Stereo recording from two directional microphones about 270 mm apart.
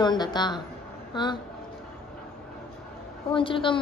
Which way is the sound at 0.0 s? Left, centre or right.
Centre.